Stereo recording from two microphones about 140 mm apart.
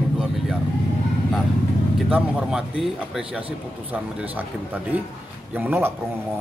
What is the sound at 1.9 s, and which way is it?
Speech, 5° right (ahead or behind).